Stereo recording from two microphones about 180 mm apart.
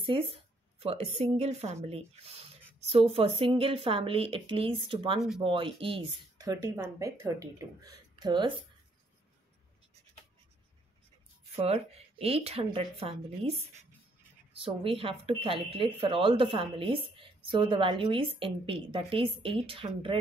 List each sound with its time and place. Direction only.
0.0 s a woman's voice: 30° right (ahead or behind)
11.5 s a woman's voice: 35° right (ahead or behind)